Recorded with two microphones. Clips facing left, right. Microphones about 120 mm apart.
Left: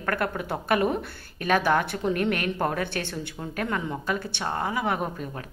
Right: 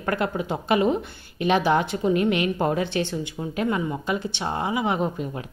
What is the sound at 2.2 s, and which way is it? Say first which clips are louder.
Speech: right 4 dB; 50° left (ahead or behind).